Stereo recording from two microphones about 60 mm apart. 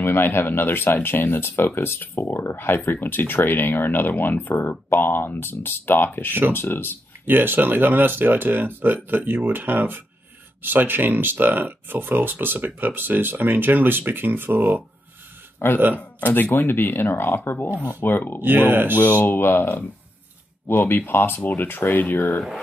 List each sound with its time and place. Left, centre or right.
0.0 s speech: left
7.2 s speech: right
15.6 s speech: left
18.4 s speech: right
19.2 s speech: left